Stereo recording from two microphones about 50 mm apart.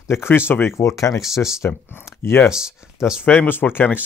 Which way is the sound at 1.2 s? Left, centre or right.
Centre.